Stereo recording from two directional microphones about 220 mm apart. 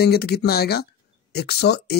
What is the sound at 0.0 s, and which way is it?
Speech, 45° left (ahead or behind).